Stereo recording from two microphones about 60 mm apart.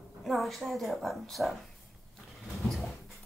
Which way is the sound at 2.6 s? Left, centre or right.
Centre.